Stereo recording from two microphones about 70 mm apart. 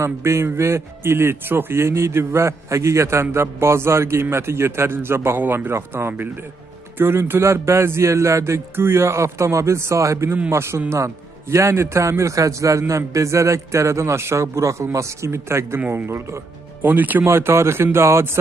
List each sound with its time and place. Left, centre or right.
0.0 s a man's voice: right
5.4 s speech: right
5.7 s a man's voice: right
16.8 s speech: right
17.2 s a man's voice: right